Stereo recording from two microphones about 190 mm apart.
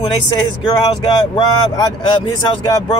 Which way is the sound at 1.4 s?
20° left (ahead or behind).